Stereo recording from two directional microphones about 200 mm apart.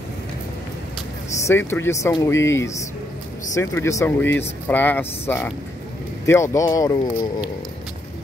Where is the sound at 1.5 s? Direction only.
10° left (ahead or behind).